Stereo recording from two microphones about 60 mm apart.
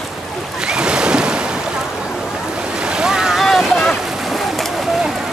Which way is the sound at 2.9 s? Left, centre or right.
Centre.